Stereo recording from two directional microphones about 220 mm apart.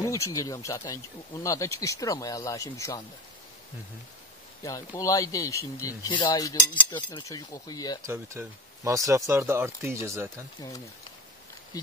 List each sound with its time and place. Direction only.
0.0 s speech: 15° left (ahead or behind)
4.6 s speech: 15° left (ahead or behind)
8.0 s speech: 10° right (ahead or behind)
11.7 s speech: 15° left (ahead or behind)